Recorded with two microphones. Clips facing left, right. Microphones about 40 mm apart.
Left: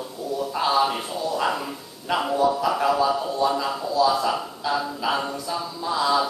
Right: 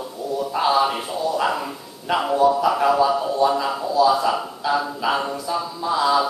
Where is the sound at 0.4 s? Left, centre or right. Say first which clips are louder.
Right 3 dB; centre.